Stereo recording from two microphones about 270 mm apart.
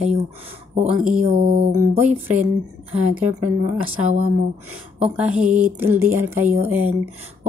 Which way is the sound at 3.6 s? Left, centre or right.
Right.